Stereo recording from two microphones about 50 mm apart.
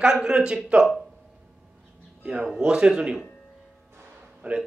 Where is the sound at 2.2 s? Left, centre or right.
Right.